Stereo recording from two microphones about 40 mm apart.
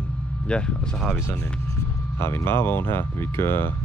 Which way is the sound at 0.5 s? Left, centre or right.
Left.